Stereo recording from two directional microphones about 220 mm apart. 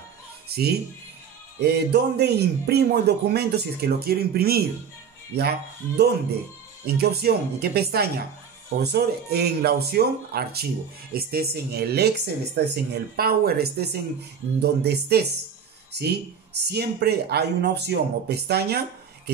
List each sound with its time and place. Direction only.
0.5 s speech: 45° right (ahead or behind)